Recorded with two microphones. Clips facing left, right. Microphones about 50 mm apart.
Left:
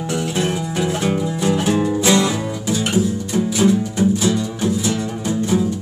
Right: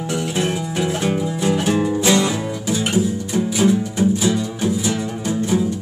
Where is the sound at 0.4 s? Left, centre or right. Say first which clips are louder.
Even; centre.